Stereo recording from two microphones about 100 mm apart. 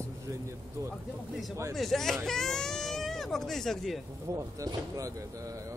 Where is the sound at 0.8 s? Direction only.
30° right (ahead or behind).